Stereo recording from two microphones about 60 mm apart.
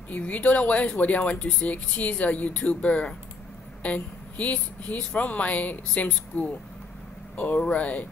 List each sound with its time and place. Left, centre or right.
0.2 s speech: left